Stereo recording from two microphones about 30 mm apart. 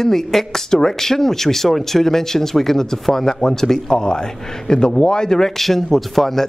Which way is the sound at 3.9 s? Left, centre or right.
Left.